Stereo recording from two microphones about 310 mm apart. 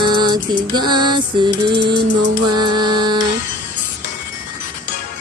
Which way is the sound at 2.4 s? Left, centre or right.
Centre.